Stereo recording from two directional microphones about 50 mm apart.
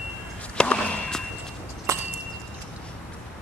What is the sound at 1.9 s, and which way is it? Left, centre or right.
Horse, right.